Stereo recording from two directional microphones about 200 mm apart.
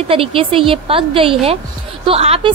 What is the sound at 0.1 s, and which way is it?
A woman's voice, 25° right (ahead or behind).